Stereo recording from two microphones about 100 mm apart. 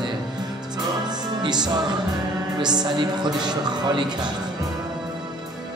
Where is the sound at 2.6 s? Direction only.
45° right (ahead or behind).